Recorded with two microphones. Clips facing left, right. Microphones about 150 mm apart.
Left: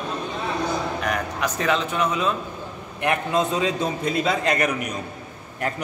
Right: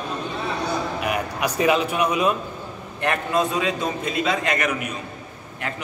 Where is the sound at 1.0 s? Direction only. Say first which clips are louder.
Right 1 dB; 10° right (ahead or behind).